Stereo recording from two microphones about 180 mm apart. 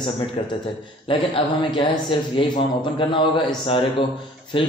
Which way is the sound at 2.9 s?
30° left (ahead or behind).